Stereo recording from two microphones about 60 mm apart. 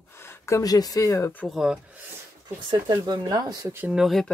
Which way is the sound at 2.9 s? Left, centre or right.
Right.